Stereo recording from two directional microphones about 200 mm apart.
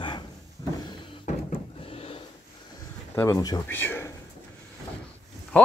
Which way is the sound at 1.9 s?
30° left (ahead or behind).